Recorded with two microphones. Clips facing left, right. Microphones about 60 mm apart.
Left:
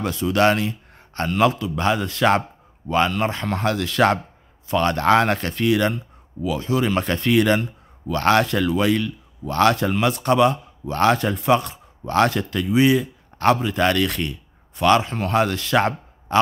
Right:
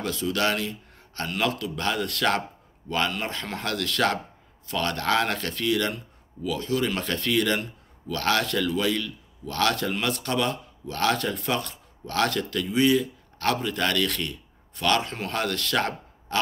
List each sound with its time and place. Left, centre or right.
0.0 s speech: left
1.4 s a man's voice: left
15.0 s speech: centre
15.3 s a man's voice: centre